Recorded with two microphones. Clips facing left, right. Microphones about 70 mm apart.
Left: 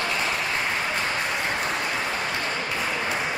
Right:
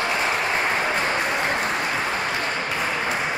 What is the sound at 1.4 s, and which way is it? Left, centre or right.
Applause, right.